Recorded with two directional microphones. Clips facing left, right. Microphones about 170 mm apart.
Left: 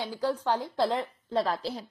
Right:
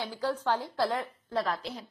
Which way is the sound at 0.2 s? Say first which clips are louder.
Left 2 dB; 15° left (ahead or behind).